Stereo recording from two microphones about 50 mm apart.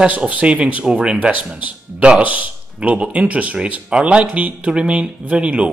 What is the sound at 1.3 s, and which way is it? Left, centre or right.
A man's voice, right.